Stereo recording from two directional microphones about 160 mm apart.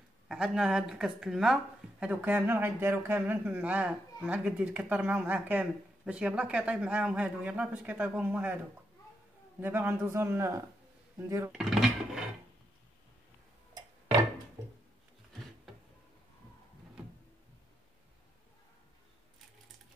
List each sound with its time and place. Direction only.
0.3 s speech: 5° right (ahead or behind)
9.6 s speech: 10° right (ahead or behind)
11.5 s a sound: 5° right (ahead or behind)